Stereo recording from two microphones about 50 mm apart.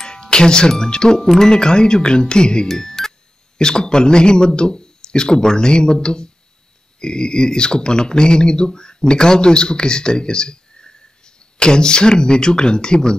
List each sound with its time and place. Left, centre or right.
0.0 s speech: centre
2.8 s music: centre
3.5 s speech: centre